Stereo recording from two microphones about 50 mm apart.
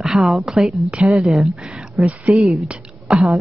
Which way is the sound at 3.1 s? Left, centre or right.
Centre.